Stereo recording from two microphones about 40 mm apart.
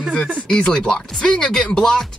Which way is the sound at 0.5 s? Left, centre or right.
Left.